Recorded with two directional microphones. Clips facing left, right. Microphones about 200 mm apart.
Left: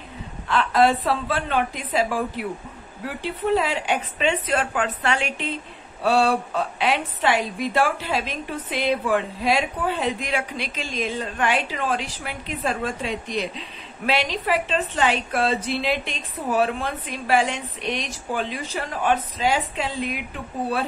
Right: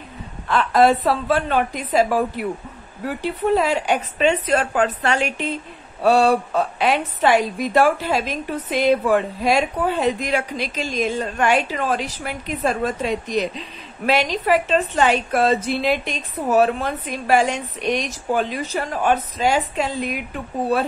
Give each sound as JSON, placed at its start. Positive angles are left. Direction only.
{"t": 0.5, "sound": "a woman's voice", "side_deg": -45}